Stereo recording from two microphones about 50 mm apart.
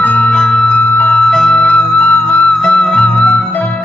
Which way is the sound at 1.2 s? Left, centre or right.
Centre.